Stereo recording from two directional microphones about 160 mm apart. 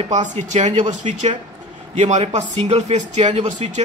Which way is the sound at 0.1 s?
45° right (ahead or behind).